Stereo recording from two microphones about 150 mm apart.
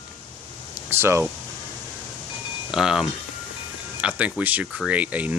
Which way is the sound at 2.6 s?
5° right (ahead or behind).